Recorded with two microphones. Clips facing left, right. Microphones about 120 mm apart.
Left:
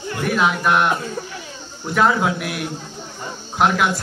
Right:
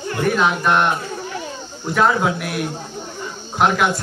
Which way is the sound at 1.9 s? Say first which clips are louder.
Even; centre (ahead or behind).